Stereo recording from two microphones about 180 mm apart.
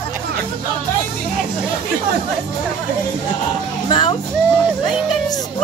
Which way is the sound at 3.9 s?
25° left (ahead or behind).